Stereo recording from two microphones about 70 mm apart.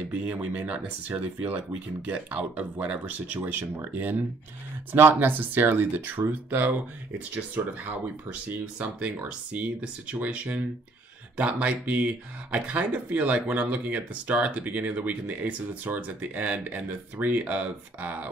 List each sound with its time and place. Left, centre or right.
0.1 s speech: right